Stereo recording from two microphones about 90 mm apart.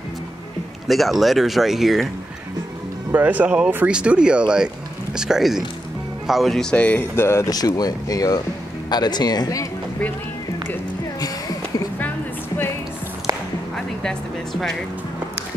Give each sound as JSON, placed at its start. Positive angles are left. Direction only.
{"t": 0.8, "sound": "speech", "side_deg": 0}
{"t": 3.1, "sound": "speech", "side_deg": -20}
{"t": 7.2, "sound": "speech", "side_deg": 30}
{"t": 7.5, "sound": "speech", "side_deg": 45}
{"t": 11.1, "sound": "a sound", "side_deg": 45}
{"t": 13.3, "sound": "music", "side_deg": -40}
{"t": 13.7, "sound": "speech", "side_deg": 5}